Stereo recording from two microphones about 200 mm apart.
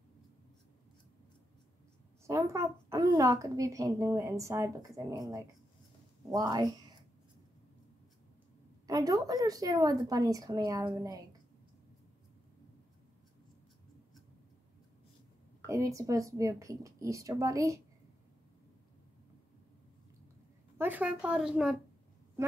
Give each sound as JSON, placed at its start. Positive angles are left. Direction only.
{"t": 2.2, "sound": "a woman's voice", "side_deg": -15}
{"t": 8.8, "sound": "a woman's voice", "side_deg": -15}
{"t": 15.6, "sound": "a woman's voice", "side_deg": -15}
{"t": 20.7, "sound": "a woman's voice", "side_deg": -10}